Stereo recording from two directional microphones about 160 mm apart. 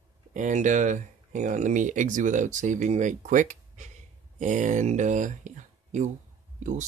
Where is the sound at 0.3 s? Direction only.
50° right (ahead or behind).